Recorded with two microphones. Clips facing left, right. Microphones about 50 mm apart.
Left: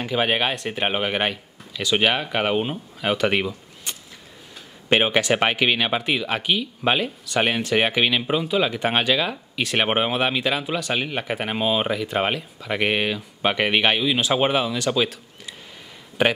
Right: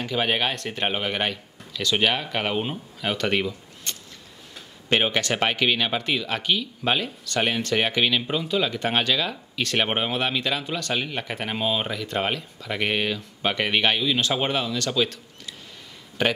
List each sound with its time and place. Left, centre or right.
0.0 s speech: centre